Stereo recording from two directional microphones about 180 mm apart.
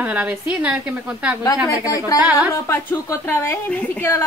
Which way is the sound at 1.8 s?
20° left (ahead or behind).